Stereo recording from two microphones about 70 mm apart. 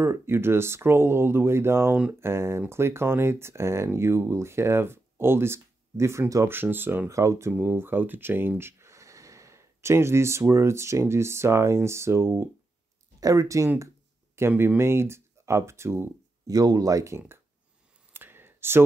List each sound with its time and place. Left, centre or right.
0.0 s speech: right
6.4 s speech: right
7.1 s speech: right
7.5 s speech: right
13.2 s speech: right
16.4 s speech: right
18.1 s clicking: right